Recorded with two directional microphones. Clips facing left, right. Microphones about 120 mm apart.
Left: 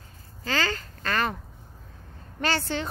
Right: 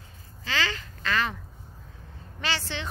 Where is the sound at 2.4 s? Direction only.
45° left (ahead or behind).